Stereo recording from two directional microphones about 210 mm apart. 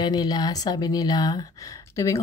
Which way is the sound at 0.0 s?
20° left (ahead or behind).